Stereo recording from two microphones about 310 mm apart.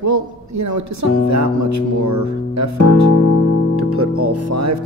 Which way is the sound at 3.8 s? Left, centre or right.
Right.